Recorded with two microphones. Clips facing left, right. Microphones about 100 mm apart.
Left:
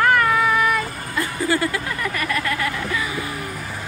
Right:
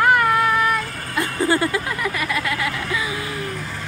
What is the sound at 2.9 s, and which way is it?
Vehicle, 15° right (ahead or behind).